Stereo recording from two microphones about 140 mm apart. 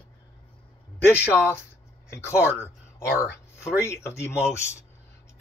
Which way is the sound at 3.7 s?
20° left (ahead or behind).